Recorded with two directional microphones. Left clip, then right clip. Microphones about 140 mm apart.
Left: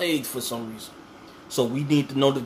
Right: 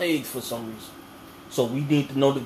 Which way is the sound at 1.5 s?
40° left (ahead or behind).